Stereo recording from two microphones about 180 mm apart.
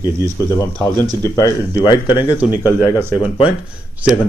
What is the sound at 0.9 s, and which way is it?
Speech, 20° right (ahead or behind).